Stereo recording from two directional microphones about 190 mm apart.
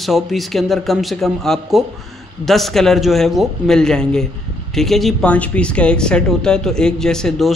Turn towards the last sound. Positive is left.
turn(degrees=0)  # may be behind; listen again after turning